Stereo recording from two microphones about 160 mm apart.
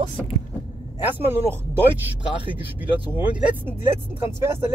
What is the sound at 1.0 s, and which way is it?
Speech, 15° right (ahead or behind).